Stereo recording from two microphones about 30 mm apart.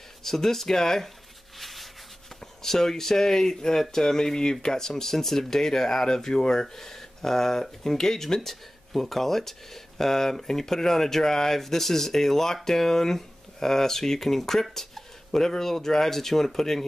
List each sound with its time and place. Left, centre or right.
0.2 s speech: centre
1.6 s rub: centre
2.6 s speech: centre
5.1 s speech: centre
8.5 s speech: centre